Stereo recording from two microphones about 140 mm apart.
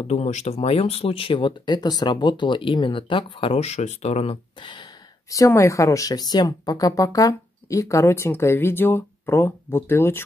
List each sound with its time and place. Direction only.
0.0 s speech: 50° left (ahead or behind); by 4.8 s 35° left (ahead or behind)
5.3 s speech: 20° left (ahead or behind)